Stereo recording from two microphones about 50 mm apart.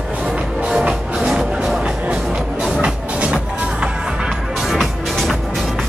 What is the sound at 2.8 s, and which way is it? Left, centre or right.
Music, right.